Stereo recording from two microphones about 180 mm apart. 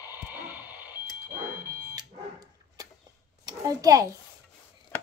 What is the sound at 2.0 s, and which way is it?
Dog, 20° right (ahead or behind).